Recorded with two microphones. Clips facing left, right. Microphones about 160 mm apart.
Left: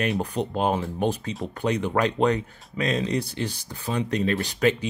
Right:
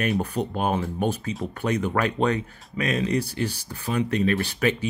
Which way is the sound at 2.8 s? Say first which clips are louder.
Right 1 dB; 30° left (ahead or behind).